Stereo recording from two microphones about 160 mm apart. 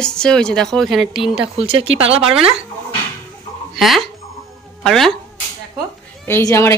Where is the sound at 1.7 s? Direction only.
35° right (ahead or behind).